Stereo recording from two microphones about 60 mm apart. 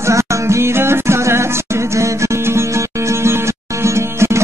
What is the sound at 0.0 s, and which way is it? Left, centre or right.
Music, right.